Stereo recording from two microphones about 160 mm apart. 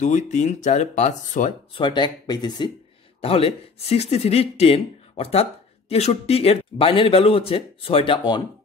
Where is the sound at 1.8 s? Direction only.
30° left (ahead or behind).